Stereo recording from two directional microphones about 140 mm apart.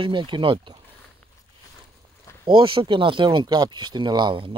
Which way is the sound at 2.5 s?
35° right (ahead or behind).